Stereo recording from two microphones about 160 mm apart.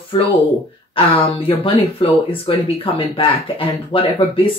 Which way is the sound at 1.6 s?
35° left (ahead or behind).